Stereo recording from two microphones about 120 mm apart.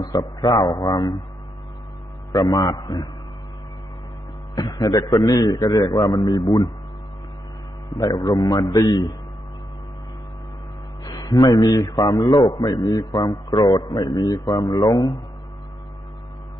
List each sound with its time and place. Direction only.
0.0 s a man's voice: 30° left (ahead or behind)
2.3 s a man's voice: 30° left (ahead or behind)
4.6 s a man's voice: 30° left (ahead or behind)
8.0 s a man's voice: 30° left (ahead or behind)
11.1 s a man's voice: 35° left (ahead or behind)